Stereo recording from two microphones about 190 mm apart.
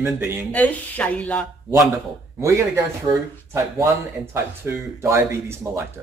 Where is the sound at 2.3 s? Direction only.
15° right (ahead or behind).